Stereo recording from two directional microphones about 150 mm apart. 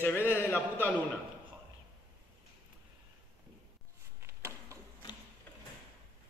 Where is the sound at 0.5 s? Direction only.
10° left (ahead or behind).